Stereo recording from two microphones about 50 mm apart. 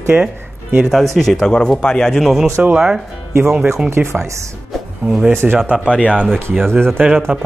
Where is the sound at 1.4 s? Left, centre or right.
Centre.